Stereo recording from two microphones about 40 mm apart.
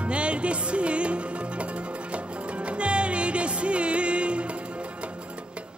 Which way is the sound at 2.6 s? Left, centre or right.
Right.